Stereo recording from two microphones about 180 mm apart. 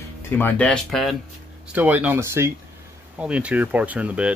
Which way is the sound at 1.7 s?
10° right (ahead or behind).